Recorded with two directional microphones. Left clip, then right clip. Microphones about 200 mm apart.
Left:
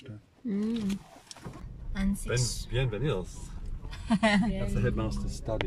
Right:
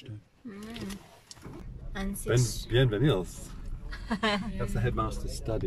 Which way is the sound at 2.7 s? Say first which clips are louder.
Right 7 dB; 35° right (ahead or behind).